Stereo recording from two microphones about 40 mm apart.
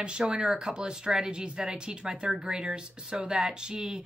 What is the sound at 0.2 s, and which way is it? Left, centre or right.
Speech, centre.